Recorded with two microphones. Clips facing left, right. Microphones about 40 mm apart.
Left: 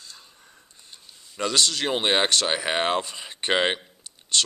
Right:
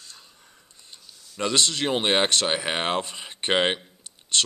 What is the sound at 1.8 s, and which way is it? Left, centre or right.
Speech, centre.